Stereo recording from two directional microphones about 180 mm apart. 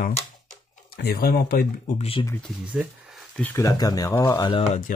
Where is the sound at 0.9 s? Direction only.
60° left (ahead or behind).